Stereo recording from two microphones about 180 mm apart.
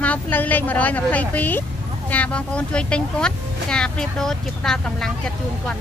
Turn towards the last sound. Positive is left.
turn(degrees=5)  # may be behind; listen again after turning